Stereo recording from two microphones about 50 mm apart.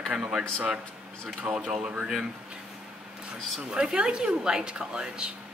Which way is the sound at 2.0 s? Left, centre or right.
Centre.